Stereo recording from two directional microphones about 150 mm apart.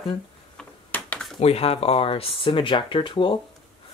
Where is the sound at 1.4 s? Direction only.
45° left (ahead or behind).